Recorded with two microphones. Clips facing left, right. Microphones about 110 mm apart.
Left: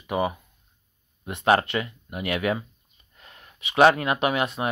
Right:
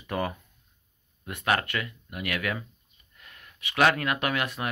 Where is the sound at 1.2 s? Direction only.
25° left (ahead or behind).